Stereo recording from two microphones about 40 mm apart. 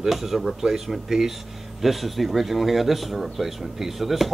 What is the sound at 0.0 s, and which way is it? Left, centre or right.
Speech, centre.